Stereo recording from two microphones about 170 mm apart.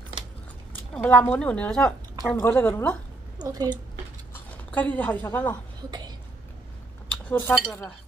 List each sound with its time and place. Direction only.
0.9 s a woman's voice: 10° left (ahead or behind)
3.4 s speech: 25° right (ahead or behind)
4.6 s a woman's voice: 10° left (ahead or behind)
5.9 s speech: 25° right (ahead or behind)
7.1 s cutlery: 10° left (ahead or behind)